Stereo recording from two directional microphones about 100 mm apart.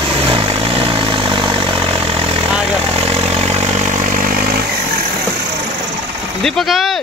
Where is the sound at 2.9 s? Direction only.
90° right.